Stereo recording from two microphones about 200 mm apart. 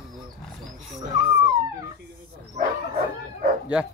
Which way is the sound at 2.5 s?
35° right (ahead or behind).